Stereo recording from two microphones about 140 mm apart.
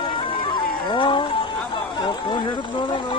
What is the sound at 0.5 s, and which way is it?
Music, 35° left (ahead or behind).